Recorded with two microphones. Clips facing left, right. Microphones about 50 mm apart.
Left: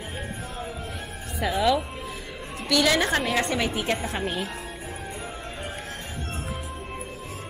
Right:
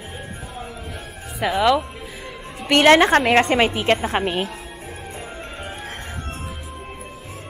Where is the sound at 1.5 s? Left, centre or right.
Right.